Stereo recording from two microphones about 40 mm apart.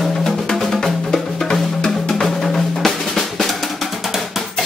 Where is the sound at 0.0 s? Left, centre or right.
Centre.